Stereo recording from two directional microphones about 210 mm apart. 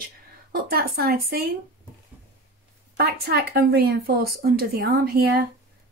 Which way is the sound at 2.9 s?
50° right (ahead or behind).